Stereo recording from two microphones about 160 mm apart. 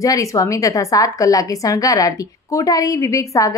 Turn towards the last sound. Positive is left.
turn(degrees=20)  # may be behind; listen again after turning